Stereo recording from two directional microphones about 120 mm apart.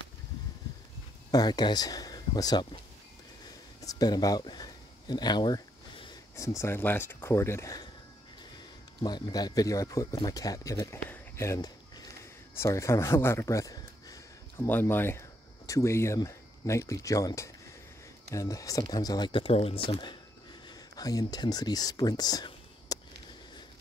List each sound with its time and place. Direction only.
1.3 s speech: 35° left (ahead or behind)
3.8 s a sound: 30° left (ahead or behind)
6.3 s speech: 25° left (ahead or behind)
9.0 s speech: 35° left (ahead or behind)
14.7 s speech: 15° left (ahead or behind); by 20.2 s 45° left (ahead or behind)
20.6 s speech: 30° left (ahead or behind)